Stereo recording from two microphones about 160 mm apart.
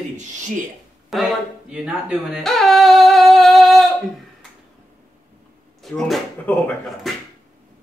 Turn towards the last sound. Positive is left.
turn(degrees=5)  # may be behind; listen again after turning